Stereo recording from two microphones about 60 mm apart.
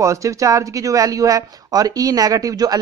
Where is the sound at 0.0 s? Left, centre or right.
Right.